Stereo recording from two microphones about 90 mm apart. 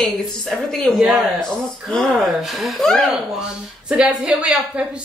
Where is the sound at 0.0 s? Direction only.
5° left (ahead or behind).